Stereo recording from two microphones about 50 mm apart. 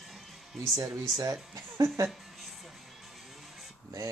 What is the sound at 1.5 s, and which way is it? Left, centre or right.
Speech, right.